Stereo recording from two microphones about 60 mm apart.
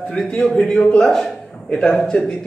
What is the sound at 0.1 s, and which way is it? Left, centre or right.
Speech, centre.